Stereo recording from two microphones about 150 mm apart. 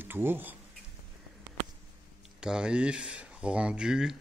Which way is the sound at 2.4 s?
5° right (ahead or behind).